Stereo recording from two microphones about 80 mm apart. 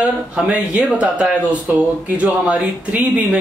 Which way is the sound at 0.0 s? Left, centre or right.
Centre.